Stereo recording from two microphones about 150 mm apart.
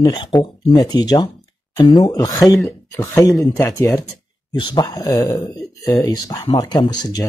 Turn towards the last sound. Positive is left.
turn(degrees=25)  # may be behind; listen again after turning